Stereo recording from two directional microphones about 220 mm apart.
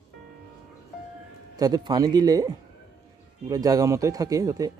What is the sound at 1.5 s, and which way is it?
Speech, 15° right (ahead or behind).